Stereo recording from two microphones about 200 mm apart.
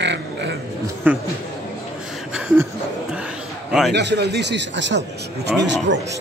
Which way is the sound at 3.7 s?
Centre (ahead or behind).